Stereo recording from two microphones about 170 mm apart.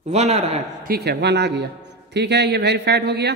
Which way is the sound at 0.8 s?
70° right (ahead or behind).